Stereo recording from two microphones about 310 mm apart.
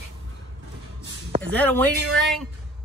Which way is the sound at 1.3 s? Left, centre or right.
Right.